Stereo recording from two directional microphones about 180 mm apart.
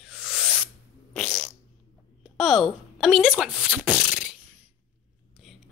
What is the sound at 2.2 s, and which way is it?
Speech, centre (ahead or behind).